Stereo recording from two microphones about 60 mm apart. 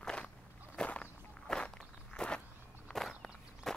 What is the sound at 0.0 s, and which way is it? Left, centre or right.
Walk, centre.